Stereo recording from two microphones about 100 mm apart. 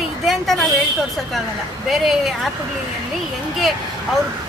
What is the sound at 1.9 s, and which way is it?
Speech, centre (ahead or behind).